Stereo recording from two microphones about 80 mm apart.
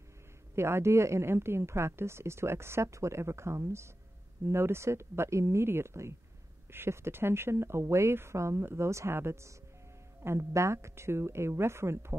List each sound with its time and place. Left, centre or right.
0.6 s speech: right